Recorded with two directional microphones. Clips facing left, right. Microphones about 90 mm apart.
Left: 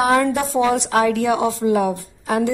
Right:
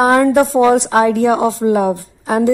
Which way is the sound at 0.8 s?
25° right (ahead or behind).